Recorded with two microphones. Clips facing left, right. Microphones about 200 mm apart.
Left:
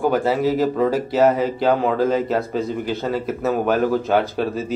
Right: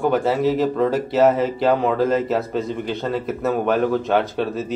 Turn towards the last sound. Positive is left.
turn(degrees=0)  # may be behind; listen again after turning